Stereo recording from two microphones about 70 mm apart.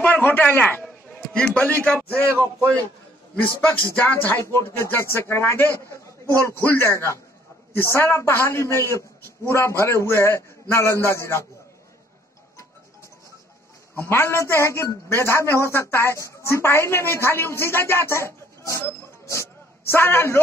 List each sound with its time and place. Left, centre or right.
0.0 s a man's voice: left
0.8 s a sound: centre
2.1 s speech: right
3.3 s speech: left
4.4 s a woman's voice: left
14.0 s a woman's voice: left
19.9 s a woman's voice: left